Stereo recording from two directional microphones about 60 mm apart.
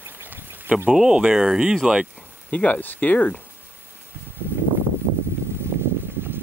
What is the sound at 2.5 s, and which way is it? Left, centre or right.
Speech, left.